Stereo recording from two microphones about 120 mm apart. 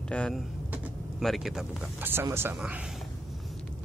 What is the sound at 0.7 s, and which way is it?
Vehicle, centre (ahead or behind).